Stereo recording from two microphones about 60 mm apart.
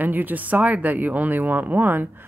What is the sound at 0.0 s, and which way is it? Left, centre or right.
Speech, right.